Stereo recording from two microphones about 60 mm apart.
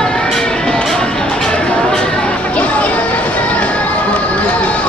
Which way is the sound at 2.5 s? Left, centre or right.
Left.